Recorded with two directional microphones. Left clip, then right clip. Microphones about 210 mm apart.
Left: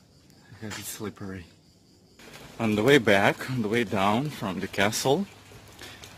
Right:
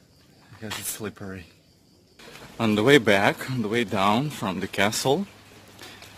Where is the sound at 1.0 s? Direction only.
15° right (ahead or behind).